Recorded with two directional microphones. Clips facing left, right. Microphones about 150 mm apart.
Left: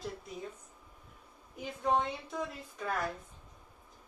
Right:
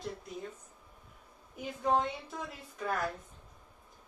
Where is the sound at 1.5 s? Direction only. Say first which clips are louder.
Right 1 dB; centre (ahead or behind).